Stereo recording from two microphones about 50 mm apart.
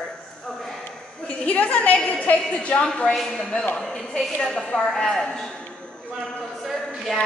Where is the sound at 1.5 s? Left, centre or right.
Left.